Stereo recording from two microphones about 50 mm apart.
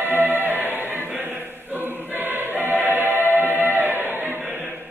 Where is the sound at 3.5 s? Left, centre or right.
Right.